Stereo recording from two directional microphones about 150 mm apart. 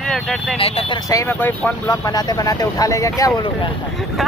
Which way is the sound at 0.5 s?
40° left (ahead or behind).